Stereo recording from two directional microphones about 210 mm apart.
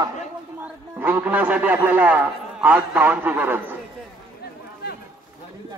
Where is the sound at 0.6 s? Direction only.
10° right (ahead or behind).